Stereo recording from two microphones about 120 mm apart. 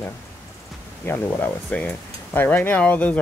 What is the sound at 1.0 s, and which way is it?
Speech, 15° left (ahead or behind).